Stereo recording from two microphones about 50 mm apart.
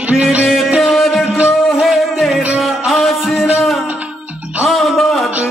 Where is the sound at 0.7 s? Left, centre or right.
Centre.